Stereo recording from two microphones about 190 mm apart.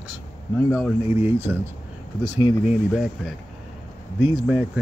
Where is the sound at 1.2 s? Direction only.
10° right (ahead or behind).